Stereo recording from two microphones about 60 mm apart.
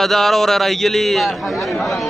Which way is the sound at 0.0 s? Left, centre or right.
Centre.